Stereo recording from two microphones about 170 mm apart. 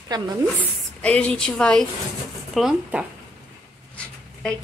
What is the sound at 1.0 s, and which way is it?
A woman's voice, 5° left (ahead or behind).